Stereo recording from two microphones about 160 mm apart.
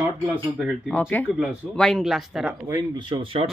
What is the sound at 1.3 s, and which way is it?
Speech, 5° right (ahead or behind).